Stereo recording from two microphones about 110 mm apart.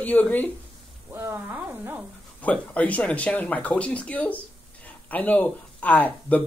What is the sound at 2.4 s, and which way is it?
Speech, 15° left (ahead or behind).